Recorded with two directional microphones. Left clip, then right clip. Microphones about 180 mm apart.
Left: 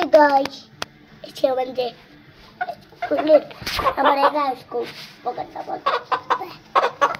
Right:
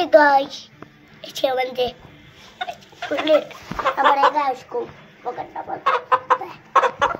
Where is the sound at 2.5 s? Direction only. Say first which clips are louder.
Left 2 dB; 35° left (ahead or behind).